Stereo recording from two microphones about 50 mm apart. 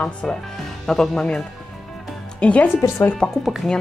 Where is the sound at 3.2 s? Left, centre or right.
Centre.